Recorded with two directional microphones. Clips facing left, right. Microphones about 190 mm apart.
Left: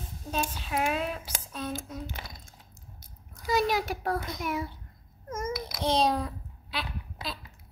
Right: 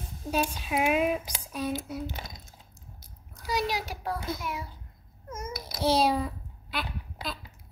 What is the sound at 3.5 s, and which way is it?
Speech, 50° left (ahead or behind).